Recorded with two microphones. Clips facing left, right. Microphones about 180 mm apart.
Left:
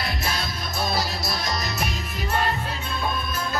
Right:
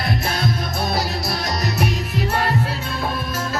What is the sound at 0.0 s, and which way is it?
Music, 55° right (ahead or behind).